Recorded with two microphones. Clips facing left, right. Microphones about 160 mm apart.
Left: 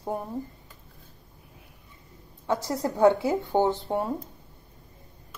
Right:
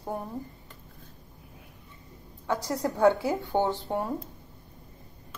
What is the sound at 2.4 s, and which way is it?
Speech, 20° left (ahead or behind).